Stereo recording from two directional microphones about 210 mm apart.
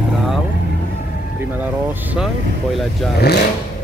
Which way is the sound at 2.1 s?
Centre (ahead or behind).